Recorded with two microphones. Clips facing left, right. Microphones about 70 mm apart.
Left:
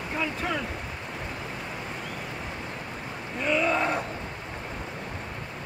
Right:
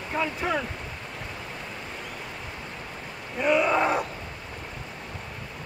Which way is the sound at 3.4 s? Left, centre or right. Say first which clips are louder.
Right 3 dB; centre.